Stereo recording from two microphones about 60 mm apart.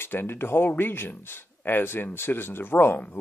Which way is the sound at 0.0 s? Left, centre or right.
Left.